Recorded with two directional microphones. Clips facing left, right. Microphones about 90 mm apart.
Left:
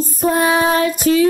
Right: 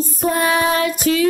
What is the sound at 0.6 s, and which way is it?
Child singing, 35° left (ahead or behind).